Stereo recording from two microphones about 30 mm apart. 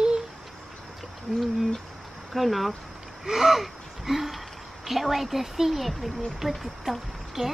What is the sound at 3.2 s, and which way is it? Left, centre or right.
Speech, centre.